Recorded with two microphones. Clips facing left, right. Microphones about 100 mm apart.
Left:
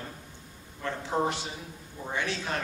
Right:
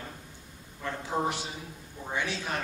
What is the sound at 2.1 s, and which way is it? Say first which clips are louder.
Speech: even; 15° right (ahead or behind).